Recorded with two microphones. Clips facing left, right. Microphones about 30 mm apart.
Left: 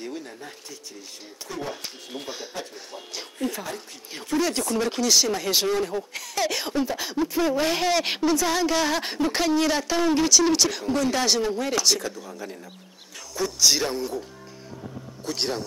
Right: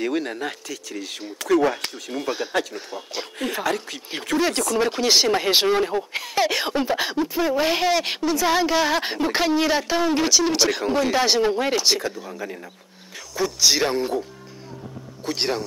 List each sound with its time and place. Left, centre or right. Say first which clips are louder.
0.0 s speech: right 11 dB; right
3.6 s speech: right 10 dB; right
4.4 s speech: right 3 dB; right
5.0 s speech: right 4 dB; right
7.2 s a woman's voice: left 2 dB; centre
8.4 s a woman's voice: right 3 dB; centre
13.8 s speech: right 5 dB; right
15.2 s speech: right 3 dB; right